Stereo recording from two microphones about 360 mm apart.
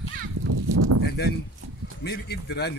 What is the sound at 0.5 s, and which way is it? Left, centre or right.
Livestock, right.